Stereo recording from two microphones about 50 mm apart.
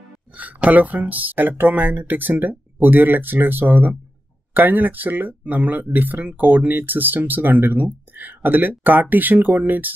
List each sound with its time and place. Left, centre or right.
0.4 s speech: right